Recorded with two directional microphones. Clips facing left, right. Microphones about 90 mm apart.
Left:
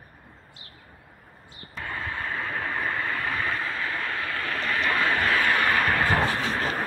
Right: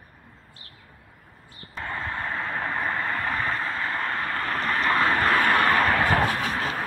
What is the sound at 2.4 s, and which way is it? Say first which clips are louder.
Vehicle: right 1 dB; 15° right (ahead or behind).